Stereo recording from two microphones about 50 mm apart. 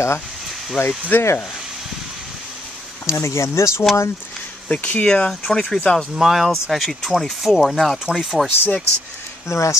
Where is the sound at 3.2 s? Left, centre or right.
Left.